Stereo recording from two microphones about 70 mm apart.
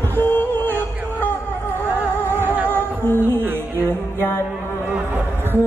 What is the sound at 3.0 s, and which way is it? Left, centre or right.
Music, left.